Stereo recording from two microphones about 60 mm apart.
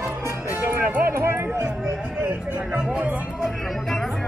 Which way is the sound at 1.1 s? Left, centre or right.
Right.